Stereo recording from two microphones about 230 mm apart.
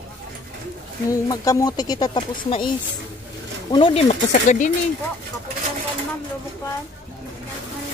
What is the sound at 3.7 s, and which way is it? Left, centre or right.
Speech, left.